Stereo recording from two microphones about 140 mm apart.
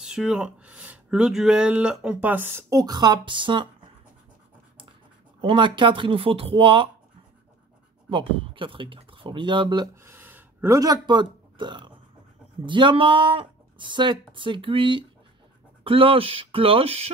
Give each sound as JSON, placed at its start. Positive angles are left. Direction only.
{"t": 0.0, "sound": "speech", "side_deg": -5}
{"t": 2.7, "sound": "speech", "side_deg": -25}
{"t": 5.4, "sound": "speech", "side_deg": -35}
{"t": 8.1, "sound": "speech", "side_deg": -40}
{"t": 10.0, "sound": "a sound", "side_deg": -15}
{"t": 12.6, "sound": "speech", "side_deg": -35}